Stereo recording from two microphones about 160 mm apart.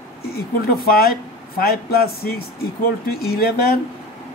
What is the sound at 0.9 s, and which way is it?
Speech, 70° left (ahead or behind).